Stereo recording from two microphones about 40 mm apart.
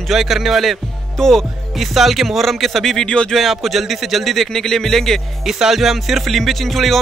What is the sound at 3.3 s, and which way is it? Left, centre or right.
Speech, centre.